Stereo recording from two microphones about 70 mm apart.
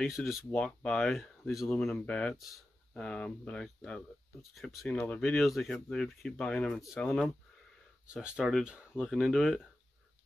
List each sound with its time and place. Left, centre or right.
0.1 s speech: centre
0.5 s speech: centre
2.3 s speech: centre
2.9 s speech: centre
4.4 s speech: centre
4.8 s speech: centre
5.4 s speech: centre
8.1 s speech: centre
9.0 s speech: centre